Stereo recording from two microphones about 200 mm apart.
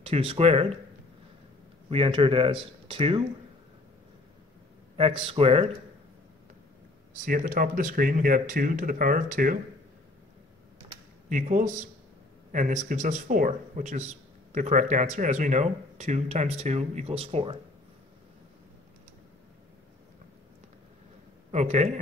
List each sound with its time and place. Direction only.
0.0 s speech: 30° right (ahead or behind)
1.9 s speech: 25° right (ahead or behind)
5.2 s speech: 30° right (ahead or behind)
7.2 s speech: 40° right (ahead or behind)
11.2 s speech: 40° right (ahead or behind)
21.5 s speech: 35° right (ahead or behind)